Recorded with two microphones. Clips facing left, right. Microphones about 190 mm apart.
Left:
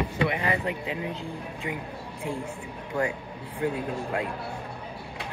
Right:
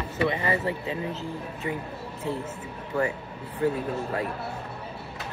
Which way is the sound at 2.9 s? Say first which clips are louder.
Right 1 dB; 15° left (ahead or behind).